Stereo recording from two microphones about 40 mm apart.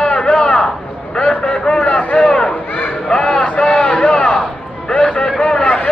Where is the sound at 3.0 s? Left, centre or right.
Centre.